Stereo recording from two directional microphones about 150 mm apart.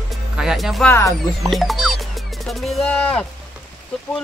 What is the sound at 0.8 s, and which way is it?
Speech, 20° left (ahead or behind).